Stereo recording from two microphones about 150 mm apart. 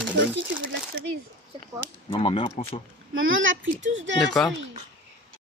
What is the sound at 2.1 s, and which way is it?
Speech, 35° left (ahead or behind).